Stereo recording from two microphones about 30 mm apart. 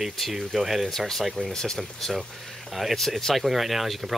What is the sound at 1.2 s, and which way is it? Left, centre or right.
Speech, centre.